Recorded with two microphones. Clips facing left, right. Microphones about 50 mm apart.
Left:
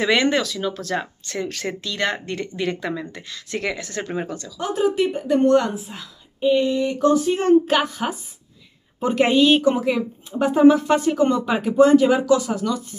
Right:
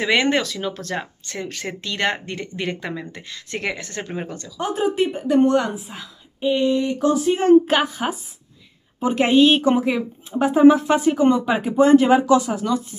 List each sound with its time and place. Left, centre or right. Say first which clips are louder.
0.0 s speech: left 1 dB; centre
0.3 s speech: even; right
0.9 s speech: left 3 dB; centre
1.8 s speech: right 2 dB; right
2.1 s a woman's voice: left 2 dB; right
5.3 s a woman's voice: even; centre
7.0 s speech: left 1 dB; centre
9.3 s a woman's voice: right 3 dB; right